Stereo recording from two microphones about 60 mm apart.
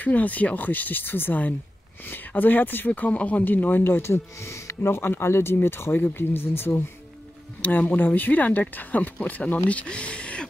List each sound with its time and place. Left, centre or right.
0.0 s speech: left
2.9 s speech: left
7.6 s speech: left